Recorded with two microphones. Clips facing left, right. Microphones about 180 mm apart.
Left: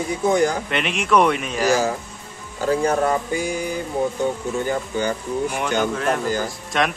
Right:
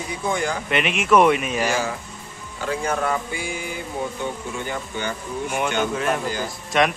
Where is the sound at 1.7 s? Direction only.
40° left (ahead or behind).